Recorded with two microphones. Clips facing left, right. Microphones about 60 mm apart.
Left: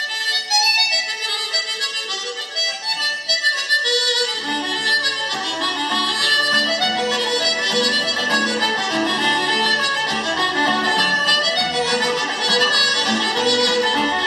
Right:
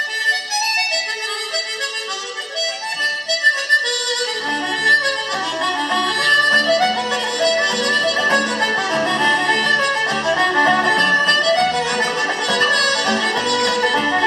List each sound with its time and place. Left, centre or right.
0.3 s music: right
4.8 s music: right
11.4 s accordion: right
12.0 s music: right